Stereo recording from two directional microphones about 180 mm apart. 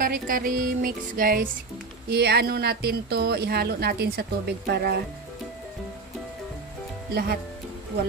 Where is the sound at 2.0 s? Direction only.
65° right (ahead or behind).